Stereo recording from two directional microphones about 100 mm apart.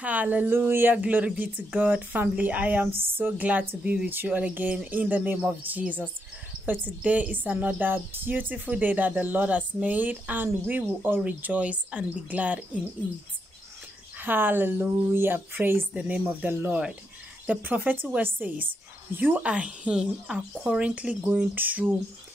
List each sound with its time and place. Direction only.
0.0 s a woman's voice: 15° right (ahead or behind)
14.2 s a woman's voice: 20° right (ahead or behind)